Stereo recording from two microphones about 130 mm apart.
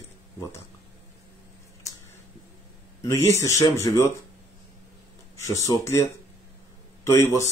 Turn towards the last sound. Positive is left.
turn(degrees=20)  # may be behind; listen again after turning